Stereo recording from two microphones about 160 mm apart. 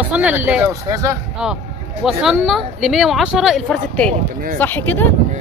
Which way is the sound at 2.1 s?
5° right (ahead or behind).